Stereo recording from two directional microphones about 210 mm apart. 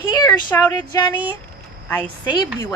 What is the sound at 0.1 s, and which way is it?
Speech, 10° left (ahead or behind).